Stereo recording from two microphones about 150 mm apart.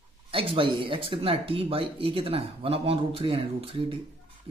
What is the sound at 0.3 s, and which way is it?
Speech, 35° right (ahead or behind).